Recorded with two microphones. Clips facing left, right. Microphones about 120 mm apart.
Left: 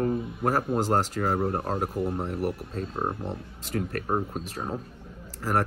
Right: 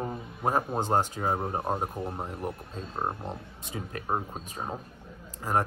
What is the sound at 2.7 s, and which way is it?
Speech, 10° right (ahead or behind).